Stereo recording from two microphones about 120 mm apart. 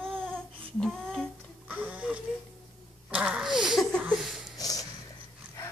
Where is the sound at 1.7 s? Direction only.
15° right (ahead or behind).